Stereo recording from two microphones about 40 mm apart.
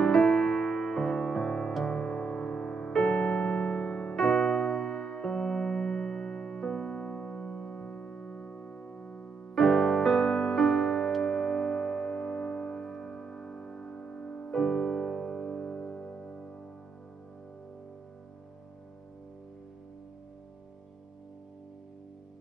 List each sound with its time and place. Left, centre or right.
0.0 s music: centre
3.2 s piano: left
4.2 s music: centre; by 9.3 s left
9.6 s music: centre